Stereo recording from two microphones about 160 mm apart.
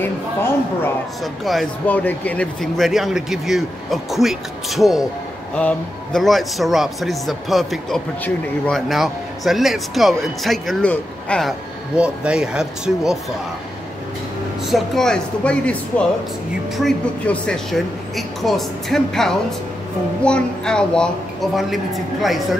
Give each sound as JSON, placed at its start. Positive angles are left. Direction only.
{"t": 0.0, "sound": "speech", "side_deg": 15}
{"t": 1.2, "sound": "speech", "side_deg": 0}
{"t": 12.0, "sound": "speech", "side_deg": -5}
{"t": 14.7, "sound": "speech", "side_deg": 5}